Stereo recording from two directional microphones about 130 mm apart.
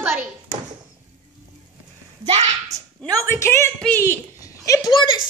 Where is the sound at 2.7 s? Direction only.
55° right (ahead or behind).